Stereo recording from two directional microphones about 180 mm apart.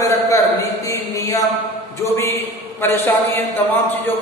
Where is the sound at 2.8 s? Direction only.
10° left (ahead or behind).